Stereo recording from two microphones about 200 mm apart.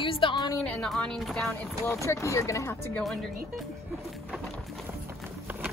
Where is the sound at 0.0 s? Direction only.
25° left (ahead or behind).